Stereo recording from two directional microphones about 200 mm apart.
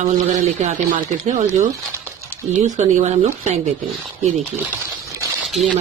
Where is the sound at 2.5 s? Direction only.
40° right (ahead or behind).